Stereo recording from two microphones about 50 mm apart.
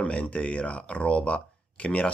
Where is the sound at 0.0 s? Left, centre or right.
Left.